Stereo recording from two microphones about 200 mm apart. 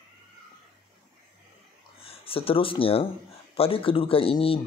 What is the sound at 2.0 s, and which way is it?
Speech, 30° left (ahead or behind).